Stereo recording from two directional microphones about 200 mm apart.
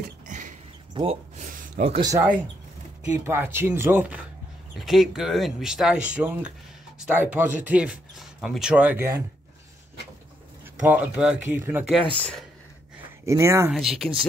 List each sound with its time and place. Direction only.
0.3 s a sound: 40° right (ahead or behind)
2.0 s speech: 15° right (ahead or behind)
3.3 s speech: 10° right (ahead or behind)
4.7 s speech: centre (ahead or behind)
10.8 s speech: 5° right (ahead or behind)
12.1 s speech: 5° left (ahead or behind)
13.2 s speech: 15° right (ahead or behind)
13.7 s speech: centre (ahead or behind)